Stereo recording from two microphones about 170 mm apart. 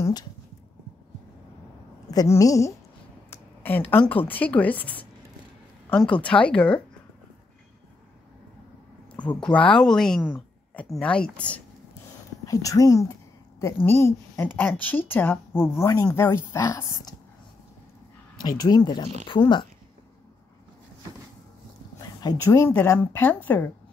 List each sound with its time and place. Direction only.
0.0 s a sound: 25° left (ahead or behind)
2.0 s a woman's voice: 20° left (ahead or behind)
3.3 s a sound: 10° left (ahead or behind)
4.1 s a woman's voice: 10° left (ahead or behind)
9.4 s a woman's voice: 10° left (ahead or behind)
12.4 s a woman's voice: 20° left (ahead or behind)
18.6 s a woman's voice: 20° left (ahead or behind)
21.9 s a woman's voice: 20° left (ahead or behind)